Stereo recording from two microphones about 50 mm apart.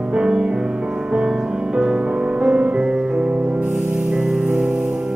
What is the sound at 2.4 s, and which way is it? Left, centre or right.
Music, right.